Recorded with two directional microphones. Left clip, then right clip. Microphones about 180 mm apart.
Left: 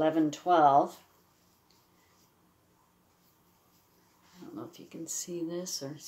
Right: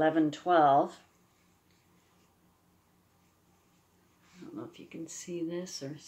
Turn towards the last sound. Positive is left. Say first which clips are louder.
# left 2 dB
turn(degrees=0)  # may be behind; listen again after turning